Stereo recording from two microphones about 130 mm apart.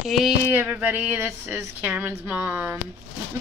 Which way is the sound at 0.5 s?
10° right (ahead or behind).